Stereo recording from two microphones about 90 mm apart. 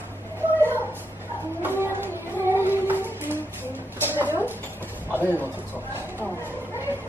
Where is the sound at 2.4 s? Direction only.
25° right (ahead or behind).